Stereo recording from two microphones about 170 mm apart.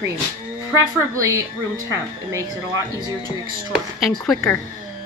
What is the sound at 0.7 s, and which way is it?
A woman's voice, 20° right (ahead or behind).